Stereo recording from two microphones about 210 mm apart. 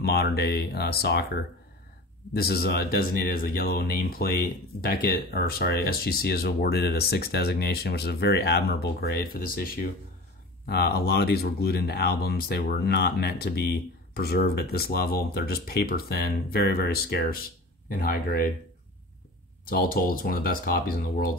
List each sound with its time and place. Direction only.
0.0 s speech: 50° left (ahead or behind)
2.3 s speech: 45° left (ahead or behind)
19.7 s speech: 45° left (ahead or behind)